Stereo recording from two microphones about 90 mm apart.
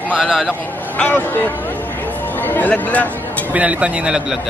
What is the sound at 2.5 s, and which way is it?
Speech, 20° left (ahead or behind).